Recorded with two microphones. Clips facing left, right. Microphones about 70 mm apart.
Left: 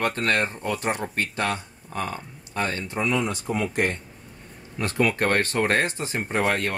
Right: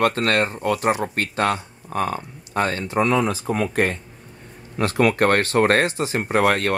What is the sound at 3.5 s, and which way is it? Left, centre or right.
Speech, right.